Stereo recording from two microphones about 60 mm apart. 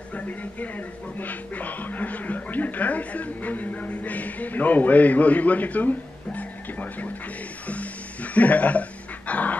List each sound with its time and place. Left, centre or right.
0.1 s speech: left
7.6 s music: left
9.3 s dog: left